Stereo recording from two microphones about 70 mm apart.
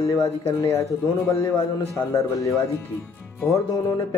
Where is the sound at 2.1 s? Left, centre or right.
Left.